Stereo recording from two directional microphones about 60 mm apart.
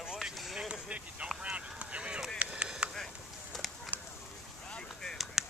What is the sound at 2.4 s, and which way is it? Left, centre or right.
Chop, centre.